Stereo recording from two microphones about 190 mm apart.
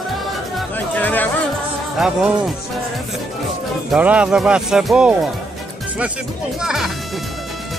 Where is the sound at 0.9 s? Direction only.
10° left (ahead or behind).